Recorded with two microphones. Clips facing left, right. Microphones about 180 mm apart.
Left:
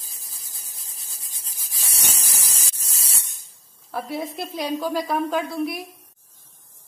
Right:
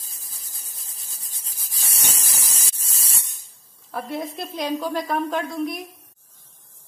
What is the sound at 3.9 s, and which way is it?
A woman's voice, centre (ahead or behind).